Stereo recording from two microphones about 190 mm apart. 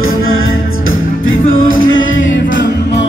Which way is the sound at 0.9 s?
90° left.